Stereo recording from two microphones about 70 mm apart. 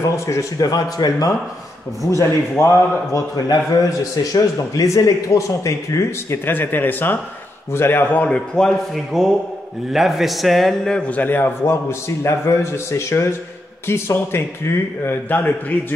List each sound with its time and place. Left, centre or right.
0.1 s speech: left
2.0 s speech: left
6.3 s a man's voice: left
8.3 s a man's voice: centre
9.9 s a man's voice: centre
11.0 s a man's voice: left
15.2 s speech: left